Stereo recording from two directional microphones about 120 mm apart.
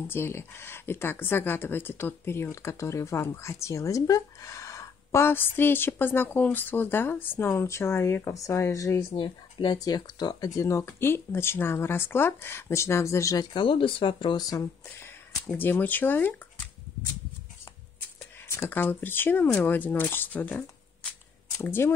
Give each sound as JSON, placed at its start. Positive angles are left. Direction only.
{"t": 0.1, "sound": "speech", "side_deg": 20}
{"t": 9.1, "sound": "speech", "side_deg": 45}
{"t": 9.8, "sound": "speech", "side_deg": 35}
{"t": 15.0, "sound": "speech", "side_deg": 15}
{"t": 18.5, "sound": "speech", "side_deg": 20}